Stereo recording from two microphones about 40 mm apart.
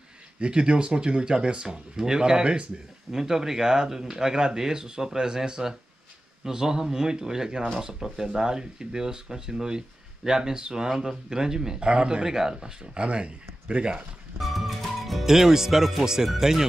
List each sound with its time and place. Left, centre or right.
0.4 s speech: right
13.0 s speech: right
14.4 s speech: centre